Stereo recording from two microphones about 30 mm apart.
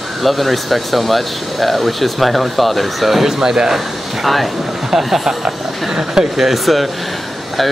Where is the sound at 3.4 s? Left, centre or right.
Right.